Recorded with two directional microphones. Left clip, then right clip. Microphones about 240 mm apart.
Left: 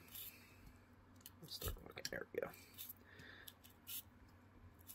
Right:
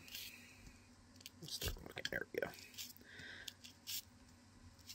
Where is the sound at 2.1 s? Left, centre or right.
Centre.